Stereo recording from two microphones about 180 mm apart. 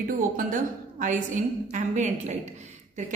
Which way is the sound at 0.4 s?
50° right (ahead or behind).